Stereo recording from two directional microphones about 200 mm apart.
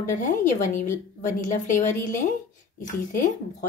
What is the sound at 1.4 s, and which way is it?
Speech, 40° left (ahead or behind).